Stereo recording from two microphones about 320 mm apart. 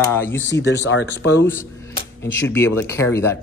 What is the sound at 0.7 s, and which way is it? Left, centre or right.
Speech, left.